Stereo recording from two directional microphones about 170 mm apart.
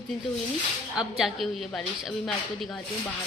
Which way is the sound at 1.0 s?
Centre (ahead or behind).